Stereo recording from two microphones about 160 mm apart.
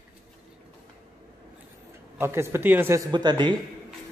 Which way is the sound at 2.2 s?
15° right (ahead or behind).